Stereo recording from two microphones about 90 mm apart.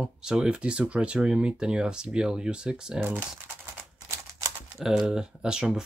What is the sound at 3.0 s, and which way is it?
Speech, 25° right (ahead or behind).